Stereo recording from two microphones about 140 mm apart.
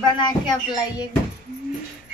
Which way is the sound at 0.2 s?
30° left (ahead or behind).